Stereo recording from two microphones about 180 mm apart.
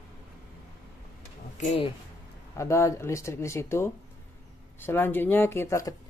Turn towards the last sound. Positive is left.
turn(degrees=15)  # may be behind; listen again after turning